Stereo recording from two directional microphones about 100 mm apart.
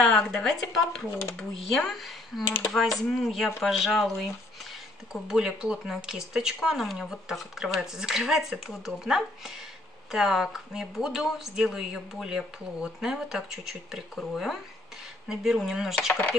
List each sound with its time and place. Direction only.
0.0 s speech: 5° left (ahead or behind)
5.3 s speech: 5° right (ahead or behind)